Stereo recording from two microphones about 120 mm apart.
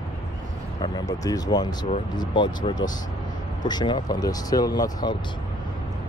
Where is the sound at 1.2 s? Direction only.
30° left (ahead or behind).